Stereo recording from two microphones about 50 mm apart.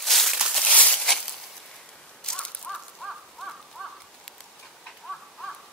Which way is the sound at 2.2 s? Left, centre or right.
Centre.